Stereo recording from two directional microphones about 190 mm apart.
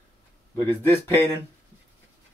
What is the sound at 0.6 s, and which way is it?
Speech, 15° left (ahead or behind).